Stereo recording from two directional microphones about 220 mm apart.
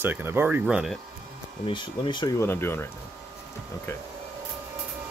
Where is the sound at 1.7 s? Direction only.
20° left (ahead or behind).